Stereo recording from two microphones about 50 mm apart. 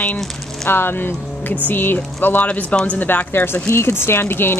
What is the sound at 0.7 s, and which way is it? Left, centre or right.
Speech, left.